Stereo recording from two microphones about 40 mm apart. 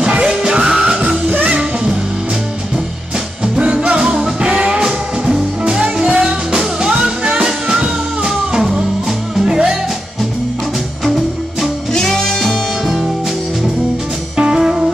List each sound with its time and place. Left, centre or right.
0.1 s music: right
1.2 s music: right
3.5 s music: right
5.2 s music: centre
5.8 s music: right
11.9 s music: centre
14.3 s music: right